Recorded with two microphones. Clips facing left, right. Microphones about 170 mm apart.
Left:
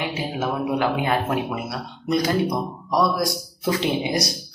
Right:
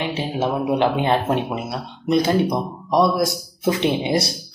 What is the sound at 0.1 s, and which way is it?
Speech, 25° right (ahead or behind).